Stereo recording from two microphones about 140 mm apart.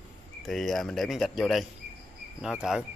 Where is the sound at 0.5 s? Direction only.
Centre (ahead or behind).